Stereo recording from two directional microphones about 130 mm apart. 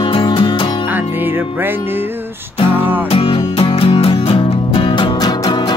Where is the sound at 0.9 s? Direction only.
15° right (ahead or behind).